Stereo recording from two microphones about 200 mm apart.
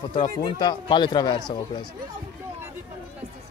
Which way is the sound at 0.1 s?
25° left (ahead or behind).